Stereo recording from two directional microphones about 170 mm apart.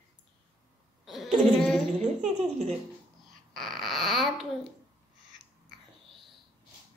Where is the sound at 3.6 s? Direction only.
Centre (ahead or behind).